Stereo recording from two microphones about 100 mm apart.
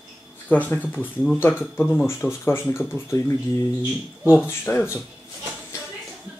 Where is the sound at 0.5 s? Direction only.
15° left (ahead or behind).